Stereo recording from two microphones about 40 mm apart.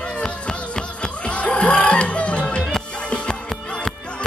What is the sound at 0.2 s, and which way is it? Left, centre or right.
Music, centre.